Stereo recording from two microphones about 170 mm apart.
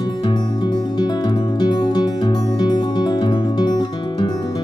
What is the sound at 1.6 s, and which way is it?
Music, 25° left (ahead or behind).